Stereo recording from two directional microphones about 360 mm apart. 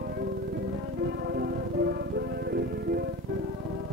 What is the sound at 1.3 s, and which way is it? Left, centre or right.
Music, right.